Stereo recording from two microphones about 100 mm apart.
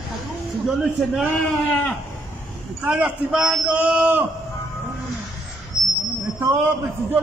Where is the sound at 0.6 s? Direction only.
Centre (ahead or behind).